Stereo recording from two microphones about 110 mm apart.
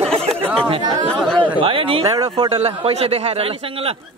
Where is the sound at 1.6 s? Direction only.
55° right (ahead or behind).